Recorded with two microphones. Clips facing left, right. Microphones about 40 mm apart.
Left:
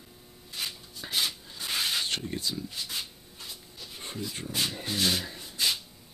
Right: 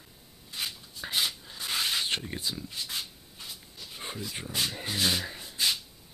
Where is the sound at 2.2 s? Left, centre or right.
Centre.